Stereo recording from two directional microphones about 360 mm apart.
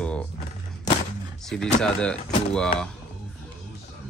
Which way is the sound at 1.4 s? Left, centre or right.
Centre.